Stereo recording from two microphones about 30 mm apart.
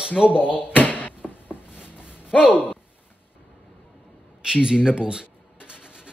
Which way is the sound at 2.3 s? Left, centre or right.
Left.